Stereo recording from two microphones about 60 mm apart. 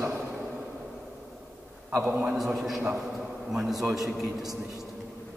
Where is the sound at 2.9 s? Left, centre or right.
Centre.